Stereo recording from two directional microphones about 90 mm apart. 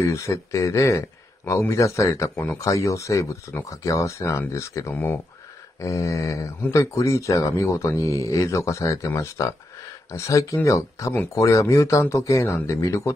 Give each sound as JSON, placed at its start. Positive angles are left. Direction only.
{"t": 0.0, "sound": "speech", "side_deg": 35}
{"t": 2.3, "sound": "speech", "side_deg": 20}
{"t": 2.6, "sound": "speech", "side_deg": 35}
{"t": 4.9, "sound": "speech", "side_deg": 25}
{"t": 5.8, "sound": "speech", "side_deg": 35}